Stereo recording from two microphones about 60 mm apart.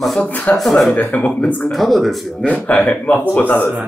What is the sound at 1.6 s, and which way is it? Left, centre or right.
Speech, centre.